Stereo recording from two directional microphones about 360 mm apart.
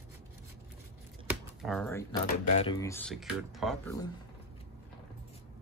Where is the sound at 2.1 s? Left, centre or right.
Centre.